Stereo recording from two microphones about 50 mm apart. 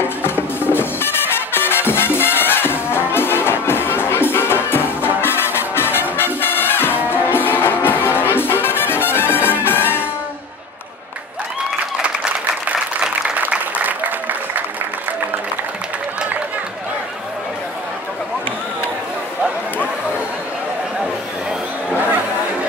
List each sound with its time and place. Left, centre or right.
0.2 s music: left
13.3 s applause: right